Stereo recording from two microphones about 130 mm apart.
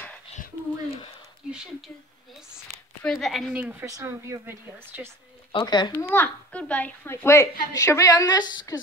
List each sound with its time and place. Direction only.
3.0 s a woman's voice: 5° left (ahead or behind)
3.8 s speech: 20° right (ahead or behind)
5.5 s speech: 35° left (ahead or behind)
6.0 s a child's voice: 15° left (ahead or behind)